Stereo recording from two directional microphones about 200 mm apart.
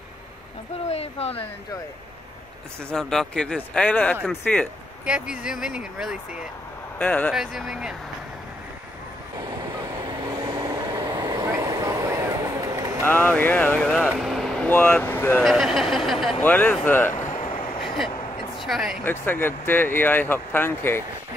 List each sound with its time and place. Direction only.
0.8 s speech: 30° left (ahead or behind)
2.9 s speech: 5° left (ahead or behind)
5.0 s speech: 5° right (ahead or behind)
7.0 s speech: 10° left (ahead or behind)
9.6 s train: 20° right (ahead or behind)
13.0 s speech: 10° left (ahead or behind)
15.4 s speech: centre (ahead or behind)
17.1 s a sound: 40° left (ahead or behind)
17.8 s a sound: centre (ahead or behind)
18.6 s speech: centre (ahead or behind)
19.0 s speech: 10° left (ahead or behind)